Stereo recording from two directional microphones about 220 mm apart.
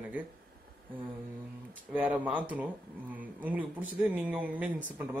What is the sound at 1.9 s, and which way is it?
Speech, 5° right (ahead or behind).